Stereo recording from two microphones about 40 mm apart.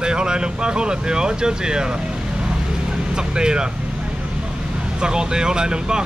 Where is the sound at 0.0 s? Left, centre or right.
Right.